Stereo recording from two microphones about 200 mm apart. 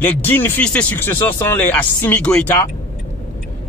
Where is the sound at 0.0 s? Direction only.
10° left (ahead or behind).